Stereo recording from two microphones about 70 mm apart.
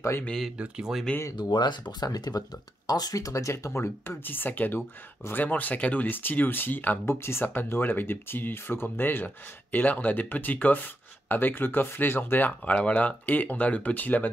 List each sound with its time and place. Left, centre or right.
0.6 s speech: centre
1.3 s speech: left
4.2 s speech: left